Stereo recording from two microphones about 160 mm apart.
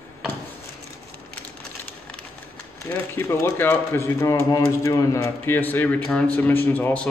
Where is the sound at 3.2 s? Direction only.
15° left (ahead or behind).